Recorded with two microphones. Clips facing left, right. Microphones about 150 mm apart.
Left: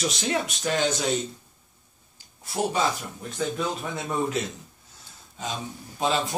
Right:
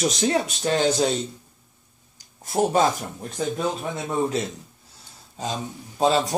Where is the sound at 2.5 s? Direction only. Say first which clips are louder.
Right 5 dB; 45° right (ahead or behind).